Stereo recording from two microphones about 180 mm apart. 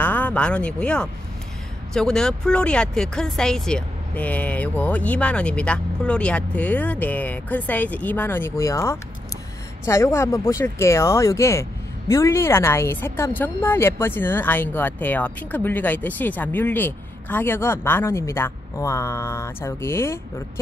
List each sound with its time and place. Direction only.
0.0 s speech: 10° left (ahead or behind)